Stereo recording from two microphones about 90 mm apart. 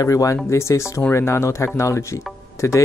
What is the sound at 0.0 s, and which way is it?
Speech, 40° left (ahead or behind).